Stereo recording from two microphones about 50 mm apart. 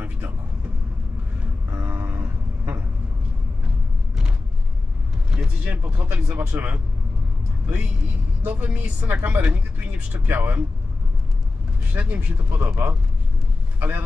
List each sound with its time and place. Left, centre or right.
1.7 s a sound: right
5.3 s vehicle: centre
5.7 s speech: right
11.9 s speech: right
12.4 s speech: right
13.7 s speech: right